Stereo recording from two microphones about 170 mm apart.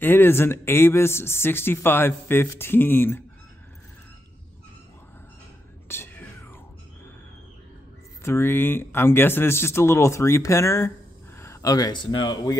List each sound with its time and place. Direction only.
0.0 s speech: 10° left (ahead or behind)
5.9 s whispering: 15° left (ahead or behind)
8.2 s speech: 15° left (ahead or behind)